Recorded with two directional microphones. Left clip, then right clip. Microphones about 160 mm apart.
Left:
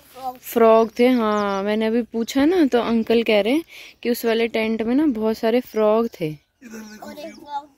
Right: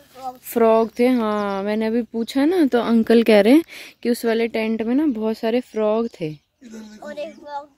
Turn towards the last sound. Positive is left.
turn(degrees=0)  # may be behind; listen again after turning